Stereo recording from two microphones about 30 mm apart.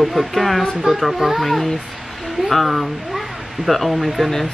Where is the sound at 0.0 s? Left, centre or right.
Centre.